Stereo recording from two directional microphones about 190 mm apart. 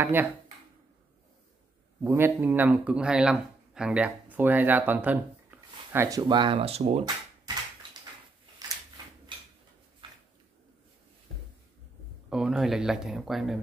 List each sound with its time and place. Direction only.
0.0 s speech: 10° right (ahead or behind)
2.0 s speech: 10° right (ahead or behind); by 7.1 s 30° right (ahead or behind)
10.0 s a sound: 25° right (ahead or behind)
12.3 s speech: 5° right (ahead or behind)